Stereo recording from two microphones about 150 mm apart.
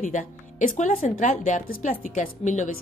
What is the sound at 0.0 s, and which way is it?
A woman's voice, 55° left (ahead or behind).